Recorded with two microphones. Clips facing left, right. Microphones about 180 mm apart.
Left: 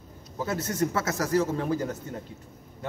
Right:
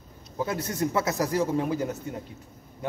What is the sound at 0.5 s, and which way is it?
Speech, 15° right (ahead or behind).